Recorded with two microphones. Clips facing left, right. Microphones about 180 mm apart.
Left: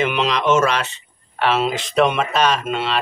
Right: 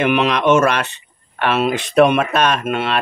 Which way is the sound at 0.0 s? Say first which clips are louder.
Right 4 dB; 60° right (ahead or behind).